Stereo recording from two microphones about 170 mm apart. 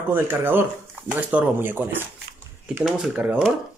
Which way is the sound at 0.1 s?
15° right (ahead or behind).